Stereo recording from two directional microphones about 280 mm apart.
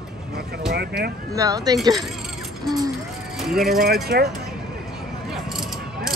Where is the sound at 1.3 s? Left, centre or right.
Centre.